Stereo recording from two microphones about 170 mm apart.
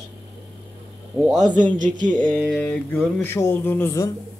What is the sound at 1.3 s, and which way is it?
Speech, 50° right (ahead or behind).